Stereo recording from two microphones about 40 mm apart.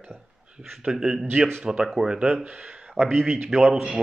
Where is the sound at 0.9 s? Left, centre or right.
Centre.